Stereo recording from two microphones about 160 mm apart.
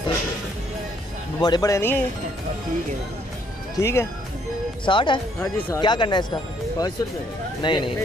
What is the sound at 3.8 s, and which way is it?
Speech, 15° left (ahead or behind).